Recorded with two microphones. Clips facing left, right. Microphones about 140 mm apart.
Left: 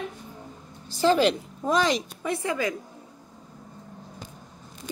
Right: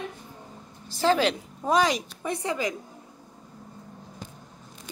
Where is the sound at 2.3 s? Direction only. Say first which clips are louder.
Left 1 dB; 20° right (ahead or behind).